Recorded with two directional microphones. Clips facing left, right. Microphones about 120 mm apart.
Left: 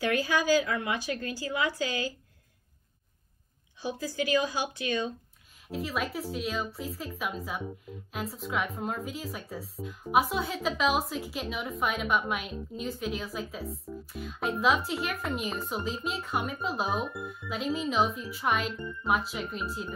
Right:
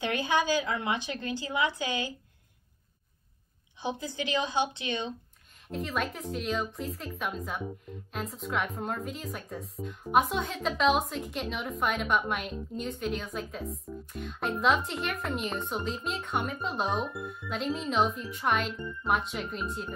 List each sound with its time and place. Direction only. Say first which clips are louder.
0.0 s a woman's voice: left 1 dB; 25° right (ahead or behind)
3.8 s a woman's voice: left 2 dB; 20° right (ahead or behind)
5.7 s speech: even; 5° left (ahead or behind)